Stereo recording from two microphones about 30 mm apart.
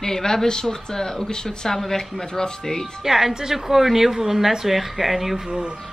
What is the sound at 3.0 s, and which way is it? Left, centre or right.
A woman's voice, centre.